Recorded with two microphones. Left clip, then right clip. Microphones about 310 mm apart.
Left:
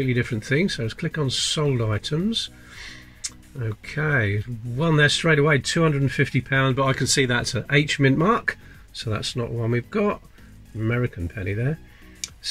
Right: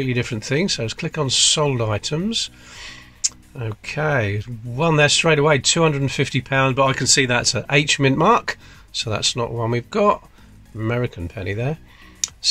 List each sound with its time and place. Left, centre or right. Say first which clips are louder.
0.0 s speech: right 2 dB; centre
11.3 s speech: right 4 dB; right